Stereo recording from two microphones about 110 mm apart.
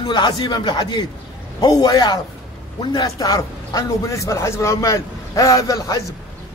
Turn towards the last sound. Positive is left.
turn(degrees=30)  # may be behind; listen again after turning